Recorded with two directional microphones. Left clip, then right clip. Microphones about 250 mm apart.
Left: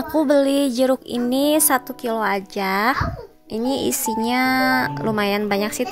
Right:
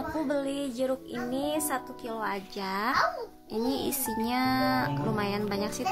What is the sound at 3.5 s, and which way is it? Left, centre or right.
Speech, left.